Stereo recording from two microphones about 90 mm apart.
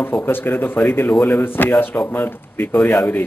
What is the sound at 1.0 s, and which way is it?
Speech, 10° left (ahead or behind).